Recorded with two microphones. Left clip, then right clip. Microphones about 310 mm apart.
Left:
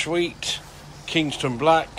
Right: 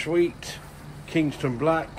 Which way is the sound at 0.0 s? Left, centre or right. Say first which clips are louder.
Even; centre.